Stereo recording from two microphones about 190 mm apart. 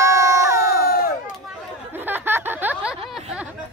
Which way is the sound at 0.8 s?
50° left (ahead or behind).